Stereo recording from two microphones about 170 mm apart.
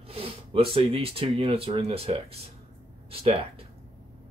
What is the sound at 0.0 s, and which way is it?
Speech, 35° right (ahead or behind).